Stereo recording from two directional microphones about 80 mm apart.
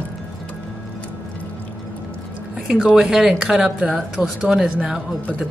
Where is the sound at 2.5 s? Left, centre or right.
Centre.